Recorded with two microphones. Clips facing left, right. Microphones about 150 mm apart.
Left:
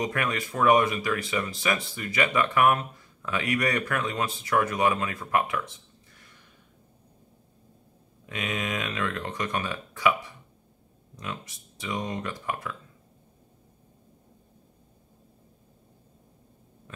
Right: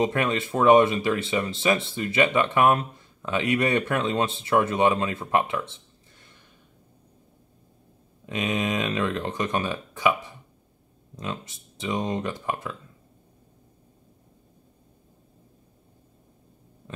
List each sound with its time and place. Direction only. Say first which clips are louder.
0.0 s speech: right 5 dB; 25° right (ahead or behind)
8.3 s speech: right 5 dB; 25° right (ahead or behind)
11.1 s speech: right 4 dB; 25° right (ahead or behind)